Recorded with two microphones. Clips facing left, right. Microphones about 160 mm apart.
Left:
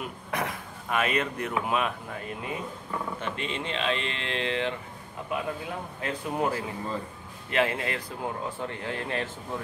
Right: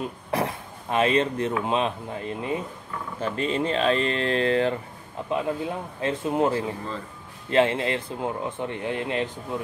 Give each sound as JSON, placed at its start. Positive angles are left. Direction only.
{"t": 0.0, "sound": "speech", "side_deg": -30}
{"t": 5.3, "sound": "speech", "side_deg": -25}